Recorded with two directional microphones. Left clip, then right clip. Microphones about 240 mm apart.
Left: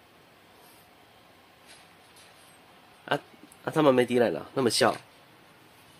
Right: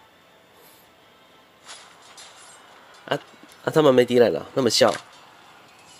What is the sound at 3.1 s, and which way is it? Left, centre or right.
Speech, centre.